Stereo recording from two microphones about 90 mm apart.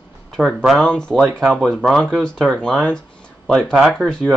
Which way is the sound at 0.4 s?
Centre (ahead or behind).